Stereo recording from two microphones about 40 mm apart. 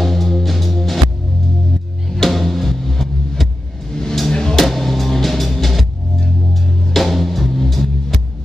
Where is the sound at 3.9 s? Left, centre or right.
Centre.